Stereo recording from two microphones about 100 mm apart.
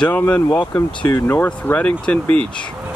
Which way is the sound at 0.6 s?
15° left (ahead or behind).